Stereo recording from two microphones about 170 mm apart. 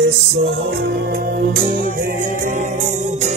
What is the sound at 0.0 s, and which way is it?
Music, 90° right.